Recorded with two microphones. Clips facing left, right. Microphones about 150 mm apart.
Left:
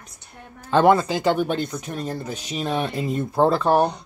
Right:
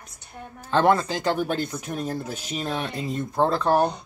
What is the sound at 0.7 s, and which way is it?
Speech, 10° left (ahead or behind).